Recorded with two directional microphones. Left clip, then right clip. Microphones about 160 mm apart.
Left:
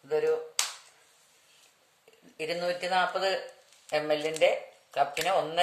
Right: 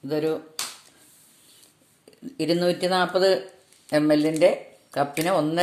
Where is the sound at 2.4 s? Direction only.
45° right (ahead or behind).